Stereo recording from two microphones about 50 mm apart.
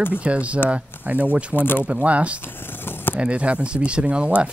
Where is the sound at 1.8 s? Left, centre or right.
Right.